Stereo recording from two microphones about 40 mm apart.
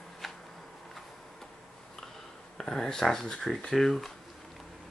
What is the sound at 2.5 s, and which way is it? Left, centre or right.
Speech, centre.